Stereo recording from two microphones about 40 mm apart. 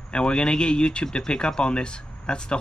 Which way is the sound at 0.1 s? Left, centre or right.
Left.